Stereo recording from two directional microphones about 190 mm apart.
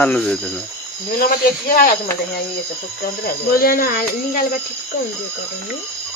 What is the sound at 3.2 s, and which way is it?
Speech, 50° left (ahead or behind).